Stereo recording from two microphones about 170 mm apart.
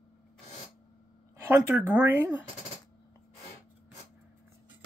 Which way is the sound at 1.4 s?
15° right (ahead or behind).